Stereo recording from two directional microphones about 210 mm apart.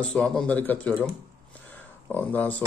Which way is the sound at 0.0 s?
5° left (ahead or behind).